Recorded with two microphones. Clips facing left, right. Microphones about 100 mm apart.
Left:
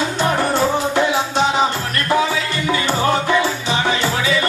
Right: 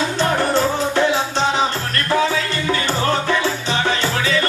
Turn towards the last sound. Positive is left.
turn(degrees=15)  # may be behind; listen again after turning